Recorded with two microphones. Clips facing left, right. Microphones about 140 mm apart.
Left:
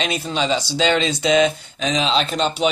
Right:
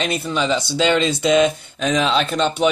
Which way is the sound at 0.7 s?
55° right (ahead or behind).